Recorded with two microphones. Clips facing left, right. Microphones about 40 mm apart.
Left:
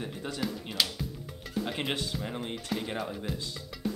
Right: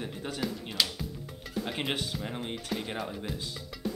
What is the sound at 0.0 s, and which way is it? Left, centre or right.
A man's voice, centre.